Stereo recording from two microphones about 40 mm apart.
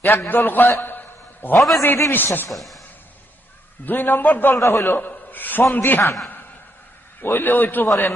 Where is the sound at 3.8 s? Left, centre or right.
Left.